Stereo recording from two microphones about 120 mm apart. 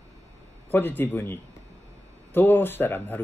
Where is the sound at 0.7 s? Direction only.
15° left (ahead or behind).